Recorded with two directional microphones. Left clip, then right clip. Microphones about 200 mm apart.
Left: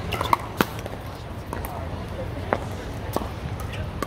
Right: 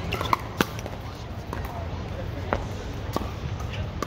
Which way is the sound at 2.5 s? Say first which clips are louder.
Left 3 dB; centre (ahead or behind).